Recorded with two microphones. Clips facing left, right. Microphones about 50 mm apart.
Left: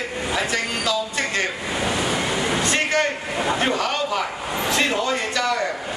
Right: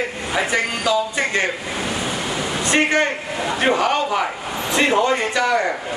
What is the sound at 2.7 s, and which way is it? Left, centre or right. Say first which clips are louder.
Speech: right 7 dB; right.